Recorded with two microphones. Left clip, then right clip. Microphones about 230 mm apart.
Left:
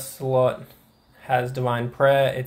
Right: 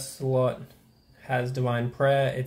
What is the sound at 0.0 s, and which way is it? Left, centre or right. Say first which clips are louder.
Speech: left 5 dB; centre.